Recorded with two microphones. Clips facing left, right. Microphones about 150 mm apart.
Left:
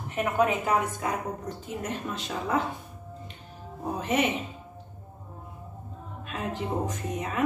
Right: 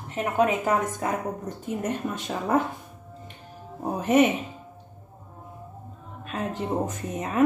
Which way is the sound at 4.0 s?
50° right (ahead or behind).